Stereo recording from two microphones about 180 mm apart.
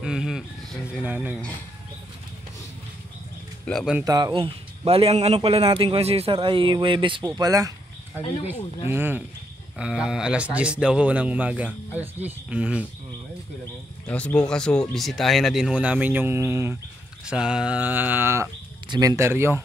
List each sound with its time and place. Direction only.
0.0 s speech: 5° right (ahead or behind)
3.6 s speech: centre (ahead or behind)
4.0 s a man's voice: 20° right (ahead or behind)
14.0 s speech: 5° left (ahead or behind); by 16.7 s 15° right (ahead or behind)
17.3 s speech: 5° right (ahead or behind)